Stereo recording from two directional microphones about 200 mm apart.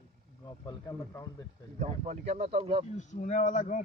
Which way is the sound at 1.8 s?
35° right (ahead or behind).